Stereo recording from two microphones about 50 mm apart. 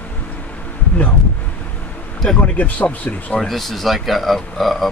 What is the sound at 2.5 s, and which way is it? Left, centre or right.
Speech, left.